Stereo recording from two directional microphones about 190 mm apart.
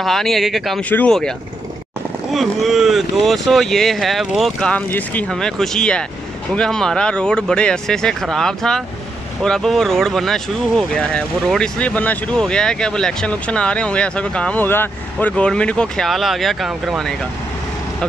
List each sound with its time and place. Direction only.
0.0 s speech: centre (ahead or behind)
2.3 s speech: centre (ahead or behind)